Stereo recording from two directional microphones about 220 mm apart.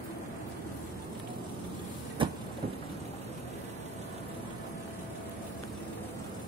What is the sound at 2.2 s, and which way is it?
Vehicle, 20° right (ahead or behind).